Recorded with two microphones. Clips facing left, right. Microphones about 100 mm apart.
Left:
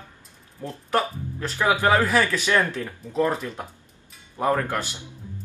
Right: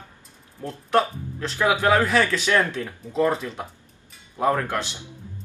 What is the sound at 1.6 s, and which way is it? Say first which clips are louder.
Speech: right 1 dB; 15° right (ahead or behind).